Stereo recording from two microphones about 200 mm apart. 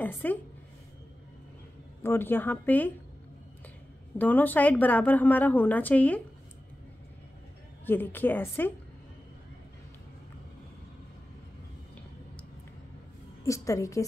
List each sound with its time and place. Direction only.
0.0 s a woman's voice: 10° left (ahead or behind)
2.0 s a woman's voice: 10° left (ahead or behind)
4.2 s a woman's voice: 10° left (ahead or behind)
7.8 s a woman's voice: 10° left (ahead or behind)
13.4 s a woman's voice: 15° left (ahead or behind)